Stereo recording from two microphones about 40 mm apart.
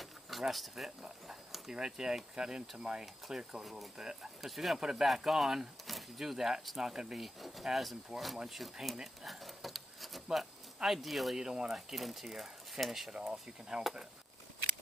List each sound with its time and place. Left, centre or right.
0.0 s a sound: centre
0.8 s speech: centre
3.6 s speech: centre
4.0 s speech: centre
4.5 s speech: centre
4.7 s speech: centre
7.2 s speech: centre
8.9 s a sound: centre
11.0 s speech: centre
11.3 s speech: centre
11.9 s speech: centre
13.1 s speech: centre